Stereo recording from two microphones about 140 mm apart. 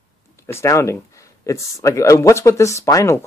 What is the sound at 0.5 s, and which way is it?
Speech, 20° left (ahead or behind).